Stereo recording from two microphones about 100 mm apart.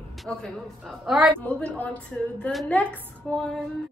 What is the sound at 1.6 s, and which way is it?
A woman's voice, 15° left (ahead or behind).